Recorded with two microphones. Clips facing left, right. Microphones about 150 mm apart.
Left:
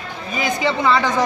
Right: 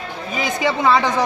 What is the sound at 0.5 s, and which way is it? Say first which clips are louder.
Speech: right 2 dB; 15° right (ahead or behind).